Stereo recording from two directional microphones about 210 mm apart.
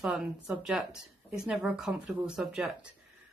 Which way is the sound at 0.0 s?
Centre (ahead or behind).